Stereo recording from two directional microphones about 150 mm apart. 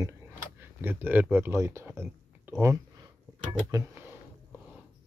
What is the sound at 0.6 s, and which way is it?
Speech, 15° right (ahead or behind).